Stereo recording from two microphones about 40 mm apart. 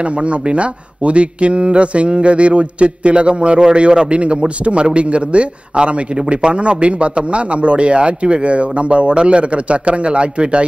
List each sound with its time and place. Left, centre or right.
0.2 s a man's voice: right